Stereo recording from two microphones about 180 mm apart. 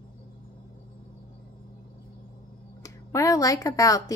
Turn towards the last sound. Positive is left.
turn(degrees=20)  # may be behind; listen again after turning